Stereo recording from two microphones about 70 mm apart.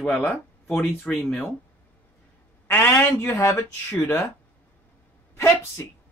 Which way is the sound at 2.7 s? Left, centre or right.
Left.